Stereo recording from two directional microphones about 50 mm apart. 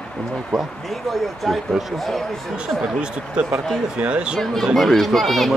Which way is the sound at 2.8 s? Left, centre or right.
Right.